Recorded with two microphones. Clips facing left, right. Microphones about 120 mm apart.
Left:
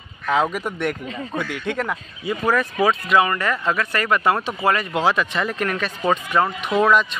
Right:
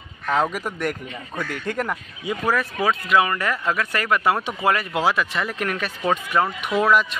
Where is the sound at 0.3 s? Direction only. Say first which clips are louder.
Left 2 dB; centre (ahead or behind).